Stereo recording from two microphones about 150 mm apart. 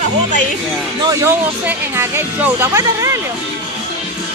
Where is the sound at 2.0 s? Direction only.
15° right (ahead or behind).